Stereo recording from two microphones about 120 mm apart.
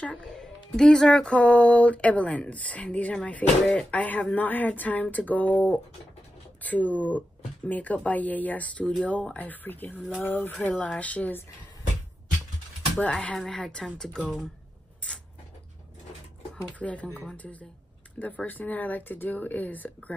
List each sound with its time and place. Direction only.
0.0 s speech: 10° left (ahead or behind)
13.0 s speech: 10° left (ahead or behind)
16.7 s speech: 10° left (ahead or behind)